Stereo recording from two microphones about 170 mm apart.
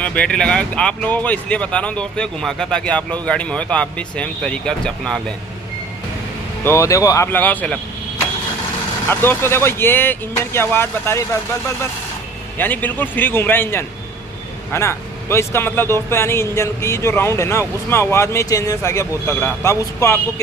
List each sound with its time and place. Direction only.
0.0 s speech: 5° left (ahead or behind)
6.6 s speech: 15° left (ahead or behind)
9.1 s speech: 10° left (ahead or behind)